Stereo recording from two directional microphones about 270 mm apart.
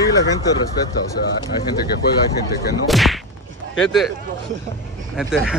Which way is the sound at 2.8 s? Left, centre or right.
Centre.